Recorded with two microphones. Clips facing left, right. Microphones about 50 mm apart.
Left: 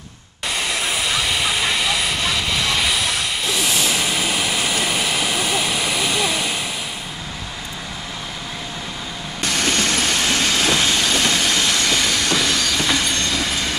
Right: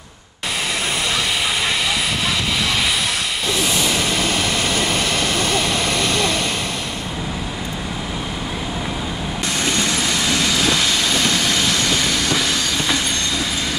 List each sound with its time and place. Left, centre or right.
0.7 s vehicle: centre
9.4 s train: left
10.7 s train: centre